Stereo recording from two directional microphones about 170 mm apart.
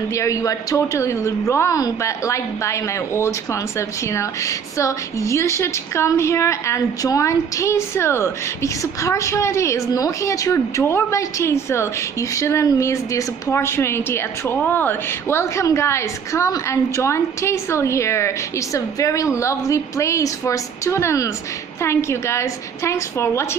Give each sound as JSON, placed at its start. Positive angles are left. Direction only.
{"t": 0.1, "sound": "a woman's voice", "side_deg": 20}